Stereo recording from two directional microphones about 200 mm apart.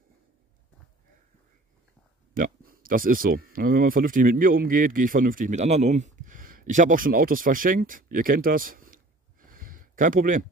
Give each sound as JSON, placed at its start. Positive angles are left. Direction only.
{"t": 2.3, "sound": "speech", "side_deg": -45}